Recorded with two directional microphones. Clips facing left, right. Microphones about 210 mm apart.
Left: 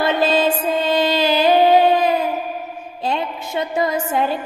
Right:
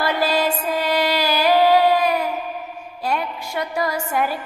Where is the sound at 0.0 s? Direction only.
20° left (ahead or behind).